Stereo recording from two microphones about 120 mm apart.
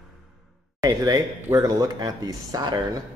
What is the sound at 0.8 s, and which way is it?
Speech, 30° right (ahead or behind).